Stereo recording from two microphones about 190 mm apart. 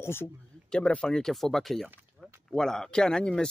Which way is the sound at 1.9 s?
10° right (ahead or behind).